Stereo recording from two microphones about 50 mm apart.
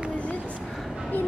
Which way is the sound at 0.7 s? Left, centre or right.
Centre.